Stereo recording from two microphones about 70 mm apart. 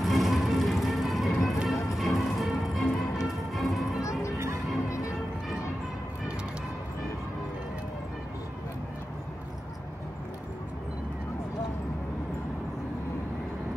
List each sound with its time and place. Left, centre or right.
0.0 s music: centre
4.0 s music: left